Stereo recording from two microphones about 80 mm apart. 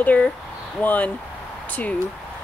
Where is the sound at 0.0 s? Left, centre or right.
Centre.